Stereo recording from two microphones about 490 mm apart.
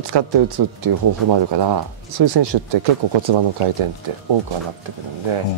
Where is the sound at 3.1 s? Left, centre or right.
Right.